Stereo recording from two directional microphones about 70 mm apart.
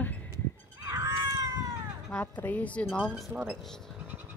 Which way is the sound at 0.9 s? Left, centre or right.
Right.